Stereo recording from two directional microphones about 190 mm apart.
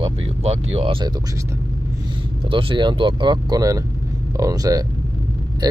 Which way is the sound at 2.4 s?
25° right (ahead or behind).